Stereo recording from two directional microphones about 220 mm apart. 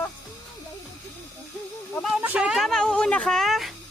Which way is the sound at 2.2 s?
5° right (ahead or behind).